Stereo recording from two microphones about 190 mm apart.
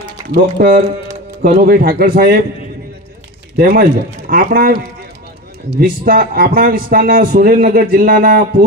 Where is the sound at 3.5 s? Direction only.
50° right (ahead or behind).